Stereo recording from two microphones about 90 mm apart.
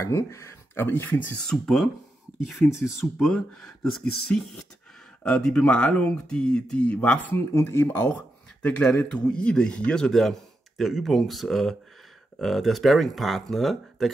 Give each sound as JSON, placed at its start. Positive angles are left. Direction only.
{"t": 0.0, "sound": "speech", "side_deg": 30}
{"t": 1.4, "sound": "a man's voice", "side_deg": 5}
{"t": 7.3, "sound": "speech", "side_deg": 30}
{"t": 8.6, "sound": "a man's voice", "side_deg": 10}